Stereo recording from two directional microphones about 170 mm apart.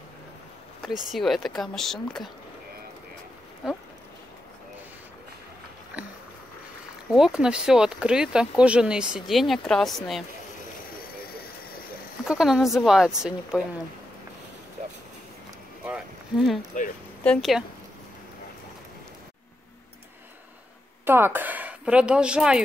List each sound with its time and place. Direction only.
0.8 s speech: centre (ahead or behind)
7.1 s speech: 5° right (ahead or behind)
12.3 s speech: centre (ahead or behind)
15.9 s speech: centre (ahead or behind)
16.7 s speech: 45° left (ahead or behind)
17.2 s speech: 5° left (ahead or behind)
21.0 s speech: 10° right (ahead or behind)